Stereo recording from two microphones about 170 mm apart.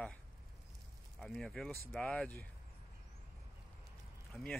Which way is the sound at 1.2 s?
Centre (ahead or behind).